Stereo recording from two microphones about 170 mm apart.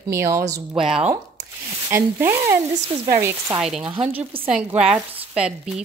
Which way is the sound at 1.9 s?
15° right (ahead or behind).